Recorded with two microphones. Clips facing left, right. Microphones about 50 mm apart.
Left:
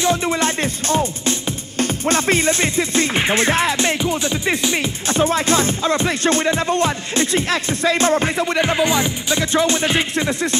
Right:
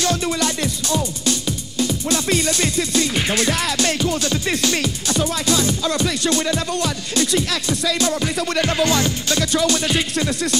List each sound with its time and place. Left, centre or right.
0.0 s speech: left
1.8 s music: left
5.0 s speech: left
8.5 s music: left